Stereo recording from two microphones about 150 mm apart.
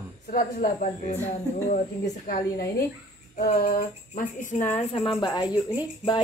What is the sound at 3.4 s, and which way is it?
Speech, 85° left.